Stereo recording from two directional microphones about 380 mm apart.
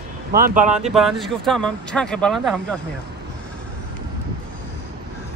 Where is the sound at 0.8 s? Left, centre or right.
Centre.